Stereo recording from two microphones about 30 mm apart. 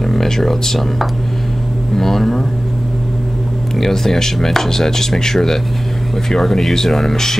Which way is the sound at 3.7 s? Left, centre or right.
Centre.